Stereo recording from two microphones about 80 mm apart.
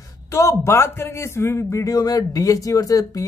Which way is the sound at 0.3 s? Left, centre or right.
Left.